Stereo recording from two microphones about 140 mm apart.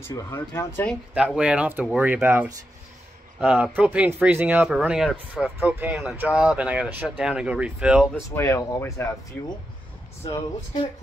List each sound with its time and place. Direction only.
0.0 s speech: 20° left (ahead or behind)
1.1 s speech: 5° right (ahead or behind)
8.3 s speech: 20° left (ahead or behind)
9.3 s speech: 10° left (ahead or behind)